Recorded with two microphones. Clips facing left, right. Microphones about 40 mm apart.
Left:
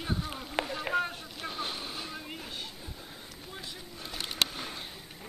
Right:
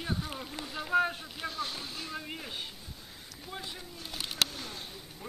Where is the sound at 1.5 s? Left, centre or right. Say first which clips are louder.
Even; left.